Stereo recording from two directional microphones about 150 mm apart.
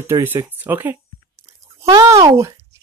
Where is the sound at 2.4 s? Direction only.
20° right (ahead or behind).